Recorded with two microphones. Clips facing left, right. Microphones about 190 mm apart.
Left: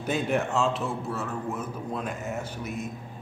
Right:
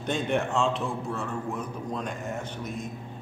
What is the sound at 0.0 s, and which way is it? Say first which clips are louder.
A man's voice: left 1 dB; 5° left (ahead or behind).